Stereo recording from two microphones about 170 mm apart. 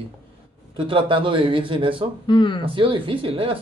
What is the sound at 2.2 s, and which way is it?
Speech, 30° left (ahead or behind).